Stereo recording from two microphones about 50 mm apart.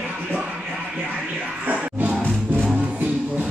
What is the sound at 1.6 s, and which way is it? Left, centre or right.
Music, right.